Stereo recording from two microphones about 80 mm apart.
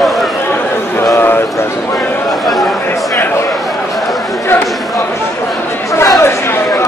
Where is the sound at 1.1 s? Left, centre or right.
Left.